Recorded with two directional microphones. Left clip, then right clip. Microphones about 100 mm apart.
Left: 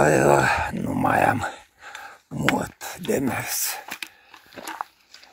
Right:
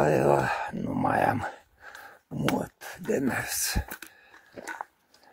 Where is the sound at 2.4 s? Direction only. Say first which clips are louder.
Left 6 dB; 5° right (ahead or behind).